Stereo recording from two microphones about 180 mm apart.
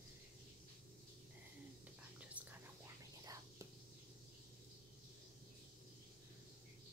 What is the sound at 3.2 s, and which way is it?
Whispering, 20° right (ahead or behind).